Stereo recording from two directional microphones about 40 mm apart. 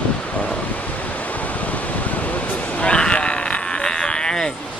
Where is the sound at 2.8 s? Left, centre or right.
Left.